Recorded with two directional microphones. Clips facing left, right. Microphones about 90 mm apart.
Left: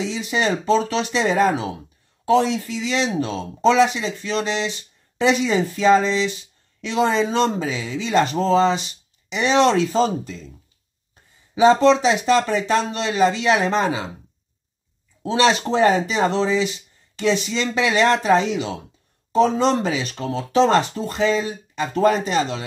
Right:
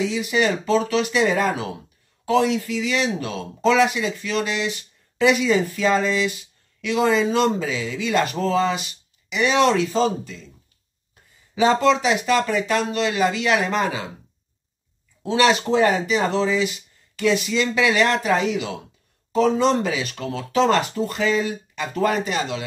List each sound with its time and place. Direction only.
0.0 s speech: 30° left (ahead or behind)
11.6 s speech: 30° left (ahead or behind)
15.2 s speech: 30° left (ahead or behind)